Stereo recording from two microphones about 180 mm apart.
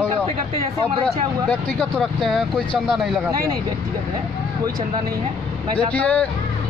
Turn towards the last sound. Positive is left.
turn(degrees=10)  # may be behind; listen again after turning